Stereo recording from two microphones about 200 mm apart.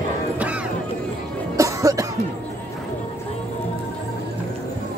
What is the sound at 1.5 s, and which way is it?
Music, 15° right (ahead or behind).